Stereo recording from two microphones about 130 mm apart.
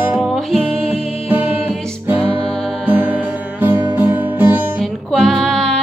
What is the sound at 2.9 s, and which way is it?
Music, 15° right (ahead or behind).